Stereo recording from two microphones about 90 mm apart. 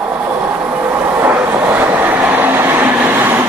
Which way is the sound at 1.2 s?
20° right (ahead or behind).